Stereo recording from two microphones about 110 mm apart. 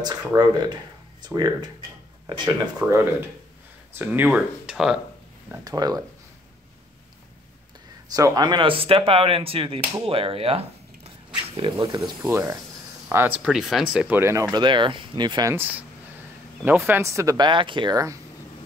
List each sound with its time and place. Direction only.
0.0 s speech: 35° right (ahead or behind)
2.8 s speech: 10° right (ahead or behind)
4.6 s speech: 5° right (ahead or behind)
5.6 s speech: 35° right (ahead or behind)
8.1 s speech: 35° right (ahead or behind); by 11.7 s 55° right (ahead or behind)
11.8 s speech: 35° right (ahead or behind)
12.3 s speech: 25° right (ahead or behind)
13.4 s speech: 5° right (ahead or behind)
14.3 s speech: 40° right (ahead or behind)
15.5 s speech: 15° right (ahead or behind)
17.4 s speech: 50° right (ahead or behind)